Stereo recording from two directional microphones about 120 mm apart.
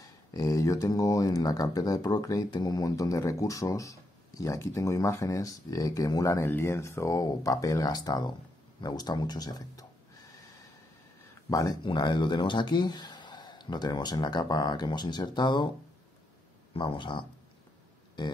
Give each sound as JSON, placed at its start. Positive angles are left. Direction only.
{"t": 0.0, "sound": "speech", "side_deg": 30}
{"t": 11.5, "sound": "speech", "side_deg": 30}
{"t": 16.7, "sound": "speech", "side_deg": 45}